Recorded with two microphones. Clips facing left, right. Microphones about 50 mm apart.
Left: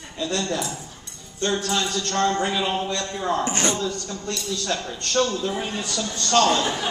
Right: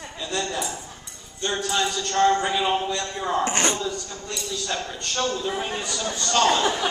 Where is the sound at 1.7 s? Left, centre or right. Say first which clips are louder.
Right 1 dB; centre.